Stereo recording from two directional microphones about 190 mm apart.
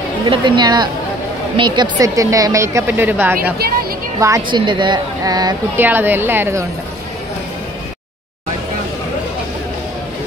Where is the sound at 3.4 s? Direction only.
55° right (ahead or behind).